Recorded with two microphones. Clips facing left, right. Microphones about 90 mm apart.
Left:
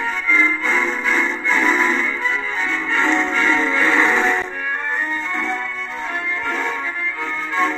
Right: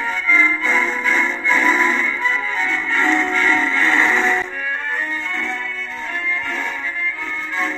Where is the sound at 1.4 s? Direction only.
5° left (ahead or behind).